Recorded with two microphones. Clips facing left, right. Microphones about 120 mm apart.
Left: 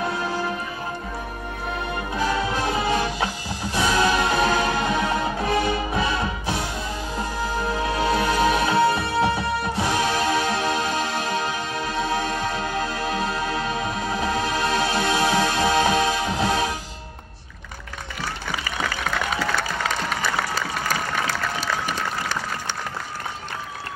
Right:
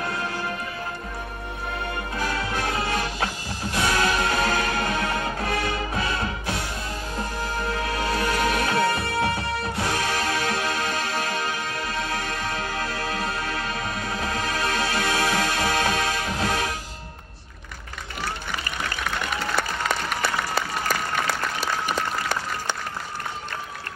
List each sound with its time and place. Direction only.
2.1 s music: 25° left (ahead or behind)